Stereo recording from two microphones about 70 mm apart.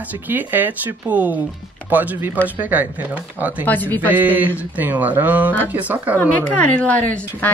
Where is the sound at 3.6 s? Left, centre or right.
Left.